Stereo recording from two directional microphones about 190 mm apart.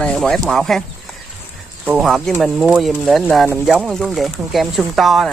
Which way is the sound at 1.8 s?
Centre (ahead or behind).